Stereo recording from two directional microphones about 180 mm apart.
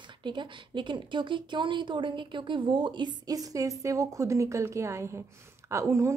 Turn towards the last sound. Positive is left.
turn(degrees=-15)  # may be behind; listen again after turning